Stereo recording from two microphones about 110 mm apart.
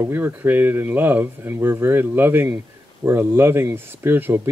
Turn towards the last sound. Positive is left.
turn(degrees=-20)  # may be behind; listen again after turning